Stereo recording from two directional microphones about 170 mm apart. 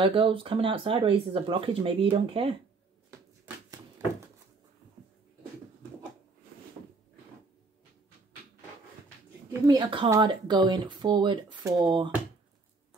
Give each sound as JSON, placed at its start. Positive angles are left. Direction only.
{"t": 0.0, "sound": "speech", "side_deg": -30}
{"t": 9.7, "sound": "speech", "side_deg": -25}